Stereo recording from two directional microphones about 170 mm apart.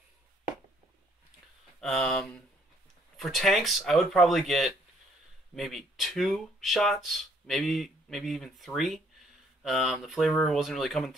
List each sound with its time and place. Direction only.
1.8 s speech: centre (ahead or behind)